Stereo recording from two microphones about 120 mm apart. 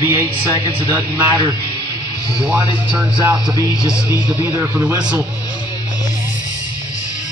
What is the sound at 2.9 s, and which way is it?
Speech, 25° right (ahead or behind).